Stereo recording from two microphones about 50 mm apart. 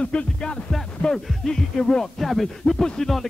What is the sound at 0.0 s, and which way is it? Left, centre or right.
Music, left.